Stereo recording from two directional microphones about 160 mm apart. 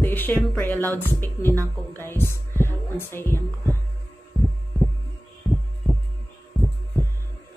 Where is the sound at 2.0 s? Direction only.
15° left (ahead or behind).